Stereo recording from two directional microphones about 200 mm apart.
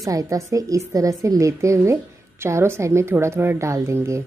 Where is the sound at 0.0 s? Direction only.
15° right (ahead or behind).